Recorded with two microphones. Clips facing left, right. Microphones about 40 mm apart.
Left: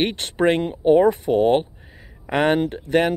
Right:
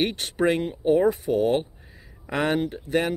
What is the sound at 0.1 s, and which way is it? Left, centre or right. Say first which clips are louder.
Speech: left 4 dB; left.